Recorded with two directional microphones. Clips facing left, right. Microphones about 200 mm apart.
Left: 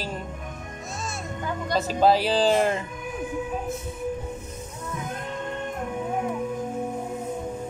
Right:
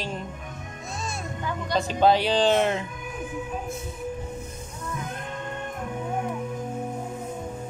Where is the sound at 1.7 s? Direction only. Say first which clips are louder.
Even; 5° left (ahead or behind).